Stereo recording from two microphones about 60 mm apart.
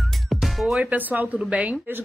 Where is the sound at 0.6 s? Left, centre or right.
Centre.